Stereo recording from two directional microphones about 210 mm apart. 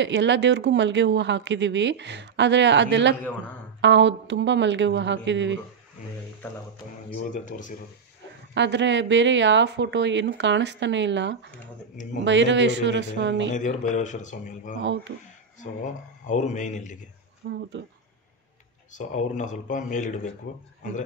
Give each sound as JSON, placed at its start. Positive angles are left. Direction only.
{"t": 0.0, "sound": "speech", "side_deg": -55}
{"t": 3.2, "sound": "a man's voice", "side_deg": 10}
{"t": 3.8, "sound": "speech", "side_deg": -60}
{"t": 7.2, "sound": "speech", "side_deg": 35}
{"t": 8.5, "sound": "speech", "side_deg": -55}
{"t": 13.5, "sound": "speech", "side_deg": 35}
{"t": 14.8, "sound": "speech", "side_deg": -60}
{"t": 15.6, "sound": "speech", "side_deg": 35}
{"t": 17.5, "sound": "speech", "side_deg": -55}
{"t": 18.9, "sound": "speech", "side_deg": 35}